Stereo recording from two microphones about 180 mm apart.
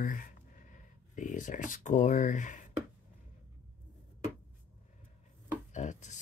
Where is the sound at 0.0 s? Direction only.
50° left (ahead or behind).